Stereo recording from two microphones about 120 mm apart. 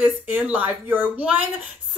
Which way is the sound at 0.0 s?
15° right (ahead or behind).